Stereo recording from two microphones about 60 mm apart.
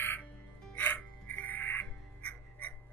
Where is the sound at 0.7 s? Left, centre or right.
Left.